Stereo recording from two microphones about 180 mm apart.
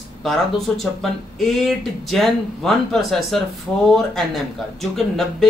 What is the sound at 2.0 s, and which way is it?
Speech, centre (ahead or behind).